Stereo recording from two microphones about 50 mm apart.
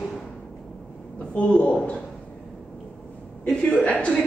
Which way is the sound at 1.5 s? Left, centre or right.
Left.